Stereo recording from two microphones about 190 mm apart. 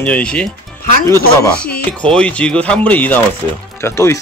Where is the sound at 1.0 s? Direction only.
15° left (ahead or behind).